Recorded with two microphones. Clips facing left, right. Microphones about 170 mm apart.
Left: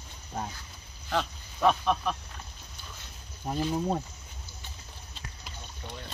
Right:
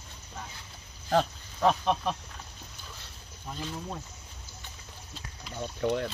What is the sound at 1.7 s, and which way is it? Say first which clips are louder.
Speech: even; 25° right (ahead or behind).